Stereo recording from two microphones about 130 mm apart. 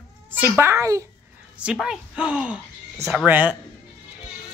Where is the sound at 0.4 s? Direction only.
20° right (ahead or behind).